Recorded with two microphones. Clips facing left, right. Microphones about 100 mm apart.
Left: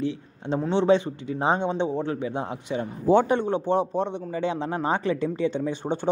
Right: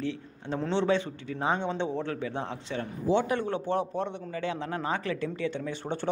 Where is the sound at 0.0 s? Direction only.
15° left (ahead or behind).